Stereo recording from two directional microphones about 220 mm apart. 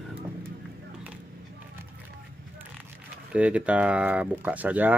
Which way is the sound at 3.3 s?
5° right (ahead or behind).